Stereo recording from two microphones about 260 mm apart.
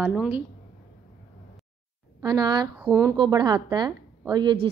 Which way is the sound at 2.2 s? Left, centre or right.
Centre.